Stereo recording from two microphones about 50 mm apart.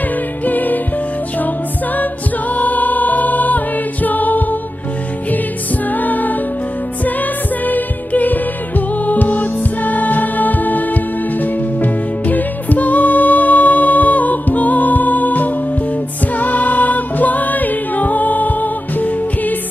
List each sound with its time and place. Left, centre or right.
0.5 s music: left
2.5 s music: left
5.9 s music: left
7.6 s music: left